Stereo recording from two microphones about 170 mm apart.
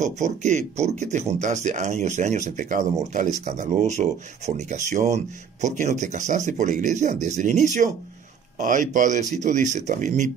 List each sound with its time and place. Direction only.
0.0 s speech: 45° right (ahead or behind)